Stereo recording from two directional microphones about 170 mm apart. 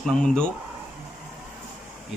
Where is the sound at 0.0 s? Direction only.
5° left (ahead or behind).